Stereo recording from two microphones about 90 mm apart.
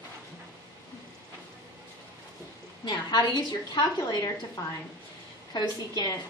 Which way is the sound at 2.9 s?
55° left (ahead or behind).